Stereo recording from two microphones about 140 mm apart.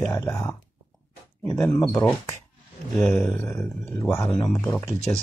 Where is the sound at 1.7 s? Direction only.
30° left (ahead or behind).